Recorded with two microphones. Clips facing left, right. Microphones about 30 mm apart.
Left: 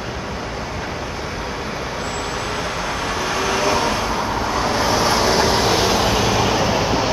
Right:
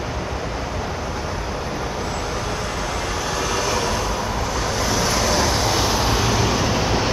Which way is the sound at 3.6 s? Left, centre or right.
Left.